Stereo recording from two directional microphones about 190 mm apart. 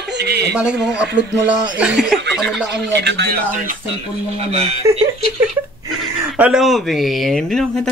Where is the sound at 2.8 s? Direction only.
60° right (ahead or behind).